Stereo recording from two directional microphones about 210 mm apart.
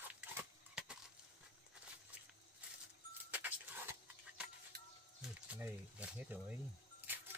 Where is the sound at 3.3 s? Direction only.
10° right (ahead or behind).